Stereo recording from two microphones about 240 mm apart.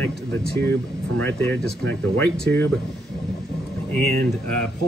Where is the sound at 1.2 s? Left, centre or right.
Centre.